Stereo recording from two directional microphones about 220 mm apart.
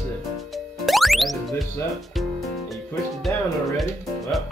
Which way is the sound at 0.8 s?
Centre (ahead or behind).